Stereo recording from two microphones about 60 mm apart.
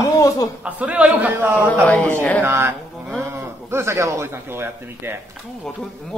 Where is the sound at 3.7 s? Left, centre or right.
Right.